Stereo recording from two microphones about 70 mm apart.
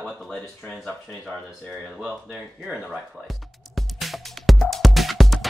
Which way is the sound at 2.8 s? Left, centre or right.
Centre.